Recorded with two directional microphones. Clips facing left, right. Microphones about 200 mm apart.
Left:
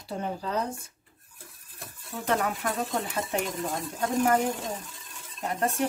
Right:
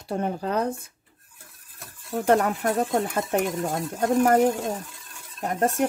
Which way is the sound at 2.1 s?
50° right (ahead or behind).